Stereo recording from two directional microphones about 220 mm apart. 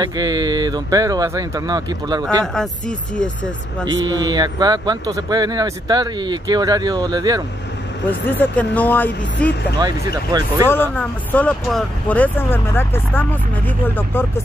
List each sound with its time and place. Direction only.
0.0 s speech: 15° right (ahead or behind)
2.4 s speech: centre (ahead or behind)
3.8 s speech: 15° right (ahead or behind)
8.1 s speech: 10° left (ahead or behind)
9.8 s speech: 20° right (ahead or behind)
10.7 s speech: 10° left (ahead or behind)